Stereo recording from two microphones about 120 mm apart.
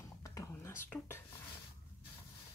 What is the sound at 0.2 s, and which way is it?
Whispering, 30° left (ahead or behind).